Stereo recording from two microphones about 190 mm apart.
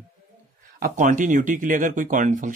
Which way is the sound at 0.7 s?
40° right (ahead or behind).